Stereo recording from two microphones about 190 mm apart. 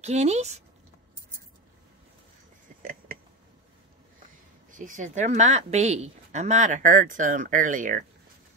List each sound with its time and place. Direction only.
0.0 s a woman's voice: 35° right (ahead or behind)
2.8 s a sound: 45° right (ahead or behind)
4.6 s a woman's voice: 45° right (ahead or behind)